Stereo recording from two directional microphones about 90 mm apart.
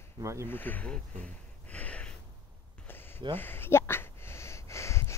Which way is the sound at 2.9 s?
25° left (ahead or behind).